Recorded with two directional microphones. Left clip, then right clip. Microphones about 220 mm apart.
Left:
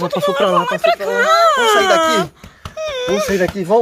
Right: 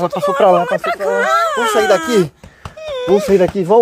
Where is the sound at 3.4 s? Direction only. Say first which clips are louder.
Right 3 dB; 35° right (ahead or behind).